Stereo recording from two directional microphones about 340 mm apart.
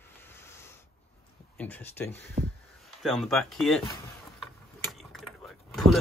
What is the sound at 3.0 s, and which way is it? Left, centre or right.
Speech, centre.